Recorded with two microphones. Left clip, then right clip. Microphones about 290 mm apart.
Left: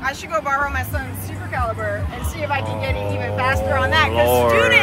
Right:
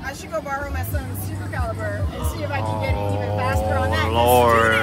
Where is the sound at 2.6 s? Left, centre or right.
Centre.